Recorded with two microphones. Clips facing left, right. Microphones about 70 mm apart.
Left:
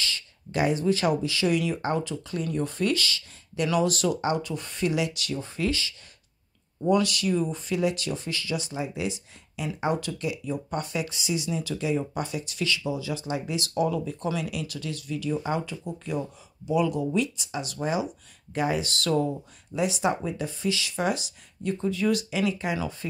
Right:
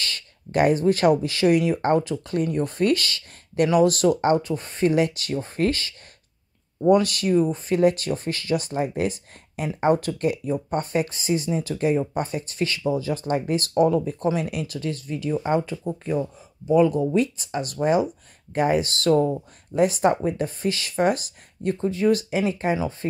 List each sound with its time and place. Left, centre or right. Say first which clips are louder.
0.0 s speech: right 1 dB; right